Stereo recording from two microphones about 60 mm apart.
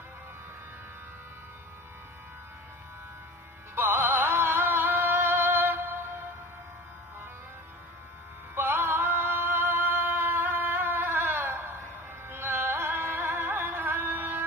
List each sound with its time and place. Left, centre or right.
3.7 s music: right
8.5 s music: right